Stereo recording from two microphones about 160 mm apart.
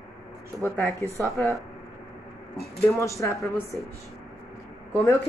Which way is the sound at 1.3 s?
15° left (ahead or behind).